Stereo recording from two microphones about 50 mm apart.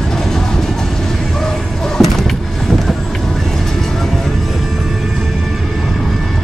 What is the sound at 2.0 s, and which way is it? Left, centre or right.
Vehicle, centre.